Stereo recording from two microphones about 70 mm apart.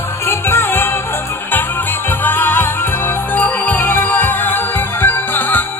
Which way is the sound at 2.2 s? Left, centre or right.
Left.